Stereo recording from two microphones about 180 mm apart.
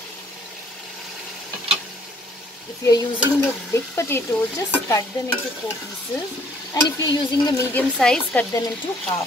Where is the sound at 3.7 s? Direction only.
15° left (ahead or behind).